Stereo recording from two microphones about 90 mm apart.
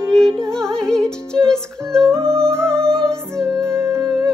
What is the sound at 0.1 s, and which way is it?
Music, 5° left (ahead or behind).